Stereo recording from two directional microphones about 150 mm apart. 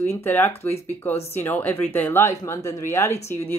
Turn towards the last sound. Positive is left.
turn(degrees=15)  # may be behind; listen again after turning